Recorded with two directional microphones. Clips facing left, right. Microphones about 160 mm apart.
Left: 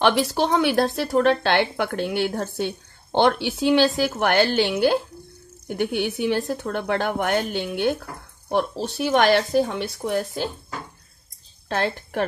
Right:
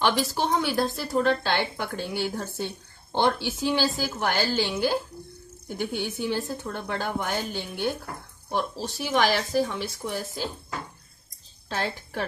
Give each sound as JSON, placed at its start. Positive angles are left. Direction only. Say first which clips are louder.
{"t": 0.0, "sound": "a woman's voice", "louder": "left 5 dB", "side_deg": 70}
{"t": 11.7, "sound": "speech", "louder": "left 6 dB", "side_deg": 60}